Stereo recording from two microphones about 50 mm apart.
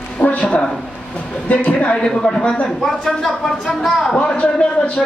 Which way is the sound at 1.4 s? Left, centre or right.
Left.